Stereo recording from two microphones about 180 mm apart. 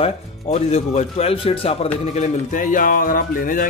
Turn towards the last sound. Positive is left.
turn(degrees=50)  # may be behind; listen again after turning